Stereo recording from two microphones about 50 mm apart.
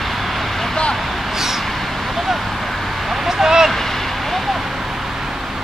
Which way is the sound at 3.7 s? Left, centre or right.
Centre.